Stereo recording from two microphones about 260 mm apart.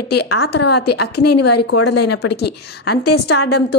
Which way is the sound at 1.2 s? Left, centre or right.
Left.